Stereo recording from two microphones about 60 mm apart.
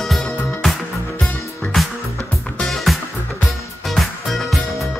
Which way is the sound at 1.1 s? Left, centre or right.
Left.